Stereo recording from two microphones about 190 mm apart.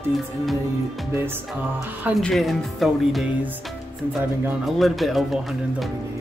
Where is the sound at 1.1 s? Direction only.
10° right (ahead or behind).